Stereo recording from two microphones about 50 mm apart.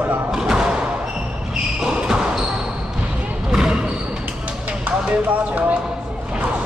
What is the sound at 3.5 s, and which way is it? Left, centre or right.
Basketball bounce, centre.